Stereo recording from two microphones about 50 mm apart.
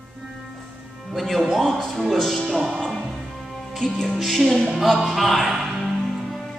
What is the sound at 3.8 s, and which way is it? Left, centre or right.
Music, centre.